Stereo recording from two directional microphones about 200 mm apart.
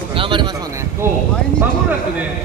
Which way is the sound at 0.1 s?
25° right (ahead or behind).